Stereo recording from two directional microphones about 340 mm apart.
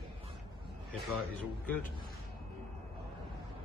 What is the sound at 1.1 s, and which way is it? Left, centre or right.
Speech, centre.